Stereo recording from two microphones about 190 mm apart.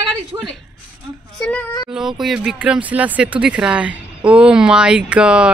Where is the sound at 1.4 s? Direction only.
10° left (ahead or behind).